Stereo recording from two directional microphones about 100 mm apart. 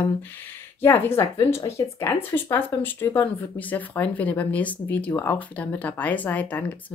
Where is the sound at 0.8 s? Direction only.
25° left (ahead or behind).